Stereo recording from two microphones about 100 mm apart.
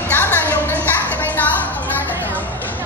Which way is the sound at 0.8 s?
15° left (ahead or behind).